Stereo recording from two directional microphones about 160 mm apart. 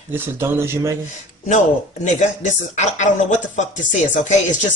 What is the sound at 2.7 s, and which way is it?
Speech, 50° left (ahead or behind).